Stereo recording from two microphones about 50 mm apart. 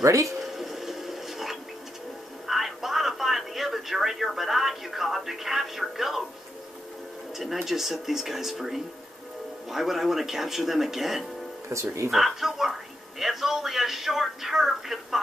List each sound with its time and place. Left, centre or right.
0.0 s speech: right
0.4 s printer: centre
2.4 s a sound: centre
7.6 s speech: centre
11.7 s speech: right
12.1 s speech: centre